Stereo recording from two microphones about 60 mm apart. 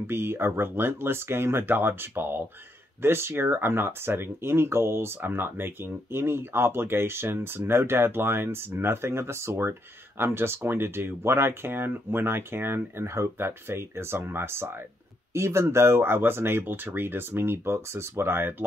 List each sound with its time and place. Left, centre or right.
0.0 s speech: right